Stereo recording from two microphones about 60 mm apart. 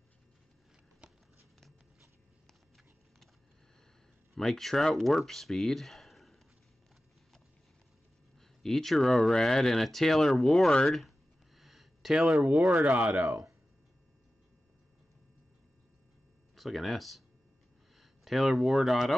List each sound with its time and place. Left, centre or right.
4.4 s speech: centre
8.4 s speech: centre
10.9 s a sound: centre
12.7 s speech: right
16.5 s speech: centre